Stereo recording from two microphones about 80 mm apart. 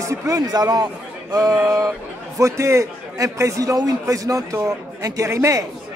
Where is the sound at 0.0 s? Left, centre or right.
Right.